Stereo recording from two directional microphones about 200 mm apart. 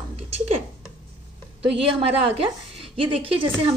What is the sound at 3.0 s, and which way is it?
Speech, 25° right (ahead or behind).